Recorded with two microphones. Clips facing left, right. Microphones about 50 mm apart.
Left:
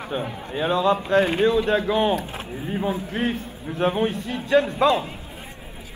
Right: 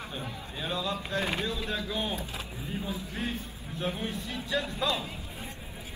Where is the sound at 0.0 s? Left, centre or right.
Left.